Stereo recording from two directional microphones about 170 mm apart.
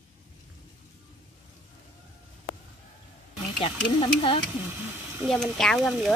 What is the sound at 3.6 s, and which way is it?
Speech, 30° left (ahead or behind).